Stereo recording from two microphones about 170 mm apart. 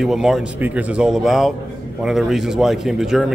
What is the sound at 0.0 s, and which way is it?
A man's voice, centre (ahead or behind).